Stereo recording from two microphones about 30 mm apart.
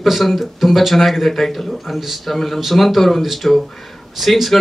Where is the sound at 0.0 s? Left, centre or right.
Centre.